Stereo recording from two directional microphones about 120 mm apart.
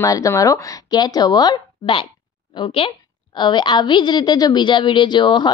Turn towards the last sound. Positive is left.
turn(degrees=40)  # may be behind; listen again after turning